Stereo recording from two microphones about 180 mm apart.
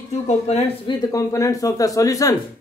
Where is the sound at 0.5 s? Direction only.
35° left (ahead or behind).